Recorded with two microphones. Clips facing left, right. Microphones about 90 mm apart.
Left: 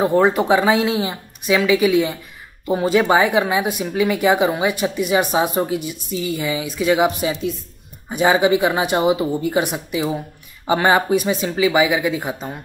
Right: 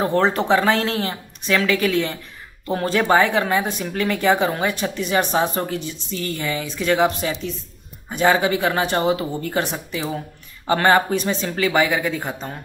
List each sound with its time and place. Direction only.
0.0 s speech: 10° left (ahead or behind)